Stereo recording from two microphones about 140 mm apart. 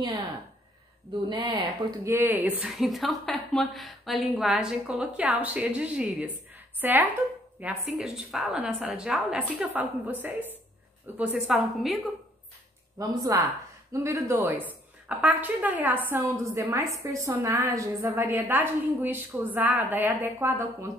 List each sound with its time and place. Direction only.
1.3 s speech: 35° right (ahead or behind)
2.0 s a woman's voice: 15° right (ahead or behind)
2.7 s a woman's voice: centre (ahead or behind)
7.6 s a woman's voice: 5° right (ahead or behind)
13.2 s a woman's voice: 25° right (ahead or behind)